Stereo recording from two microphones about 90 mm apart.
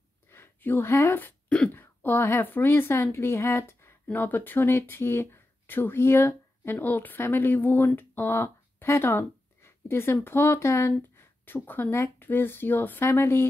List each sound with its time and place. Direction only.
0.3 s a woman's voice: 25° left (ahead or behind)